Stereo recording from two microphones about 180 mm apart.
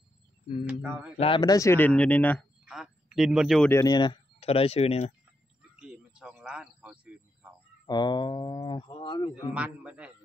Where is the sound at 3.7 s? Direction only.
20° left (ahead or behind); by 5.1 s 35° left (ahead or behind).